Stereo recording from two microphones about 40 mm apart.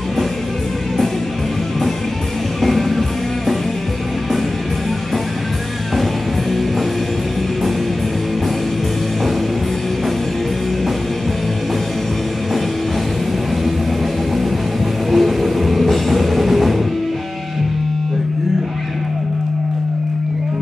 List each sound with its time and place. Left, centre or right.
2.6 s music: centre
15.0 s music: centre